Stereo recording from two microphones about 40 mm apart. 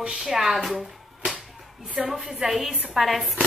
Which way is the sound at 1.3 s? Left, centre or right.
Right.